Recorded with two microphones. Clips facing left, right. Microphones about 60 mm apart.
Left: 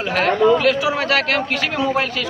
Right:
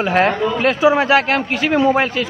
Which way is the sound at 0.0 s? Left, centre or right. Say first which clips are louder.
Right 1 dB; right.